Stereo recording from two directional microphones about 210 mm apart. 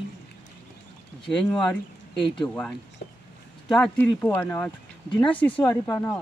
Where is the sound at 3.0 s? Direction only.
50° left (ahead or behind).